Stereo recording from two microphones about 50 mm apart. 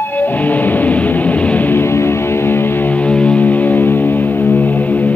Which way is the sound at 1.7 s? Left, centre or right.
Left.